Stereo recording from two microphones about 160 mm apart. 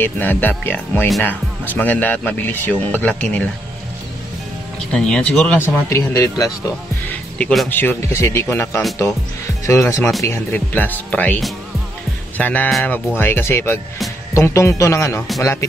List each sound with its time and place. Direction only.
0.0 s speech: 10° left (ahead or behind)
4.9 s speech: 5° left (ahead or behind)
5.6 s speech: 20° left (ahead or behind)
7.1 s speech: 5° left (ahead or behind)